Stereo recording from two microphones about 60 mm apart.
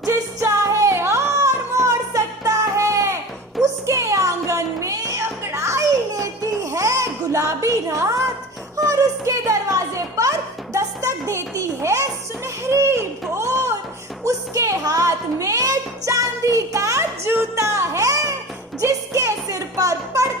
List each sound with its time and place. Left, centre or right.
0.0 s music: right
1.9 s music: right
5.4 s children playing: right
8.7 s a sound: right
16.1 s music: right
17.3 s music: right